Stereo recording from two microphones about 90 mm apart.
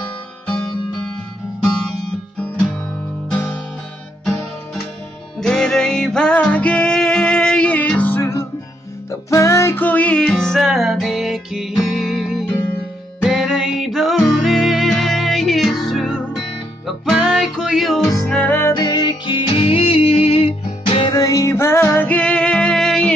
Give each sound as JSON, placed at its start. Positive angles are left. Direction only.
{"t": 5.4, "sound": "music", "side_deg": 5}
{"t": 9.8, "sound": "music", "side_deg": 15}
{"t": 10.2, "sound": "music", "side_deg": 5}
{"t": 18.4, "sound": "music", "side_deg": 20}
{"t": 18.8, "sound": "music", "side_deg": 50}
{"t": 21.1, "sound": "music", "side_deg": 40}